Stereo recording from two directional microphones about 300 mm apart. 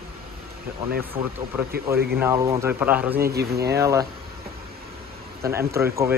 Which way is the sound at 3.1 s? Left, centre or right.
Right.